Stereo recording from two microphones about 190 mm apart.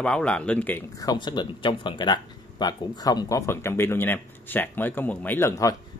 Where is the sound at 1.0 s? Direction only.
20° left (ahead or behind).